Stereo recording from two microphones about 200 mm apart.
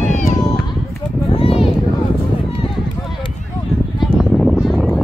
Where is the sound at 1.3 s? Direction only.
30° left (ahead or behind).